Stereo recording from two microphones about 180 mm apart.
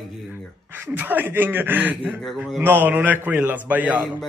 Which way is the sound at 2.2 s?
Centre (ahead or behind).